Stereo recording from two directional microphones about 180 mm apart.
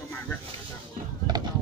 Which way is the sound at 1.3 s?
25° right (ahead or behind).